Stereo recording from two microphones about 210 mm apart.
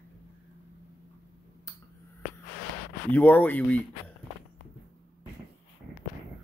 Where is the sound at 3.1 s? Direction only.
10° left (ahead or behind).